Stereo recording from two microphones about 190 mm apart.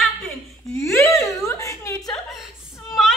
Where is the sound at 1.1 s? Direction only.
15° left (ahead or behind).